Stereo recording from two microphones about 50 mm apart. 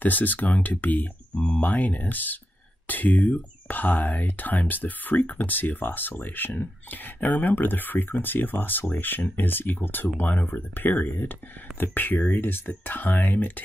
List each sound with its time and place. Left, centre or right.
0.0 s speech: left